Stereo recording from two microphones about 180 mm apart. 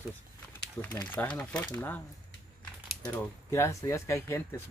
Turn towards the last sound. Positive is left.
turn(degrees=15)  # may be behind; listen again after turning